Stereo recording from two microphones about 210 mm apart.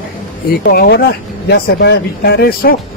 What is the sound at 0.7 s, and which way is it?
Speech, 45° left (ahead or behind).